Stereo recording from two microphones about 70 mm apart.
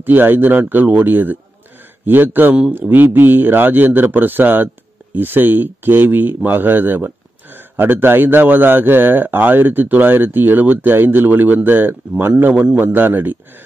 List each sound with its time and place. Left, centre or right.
0.0 s speech: right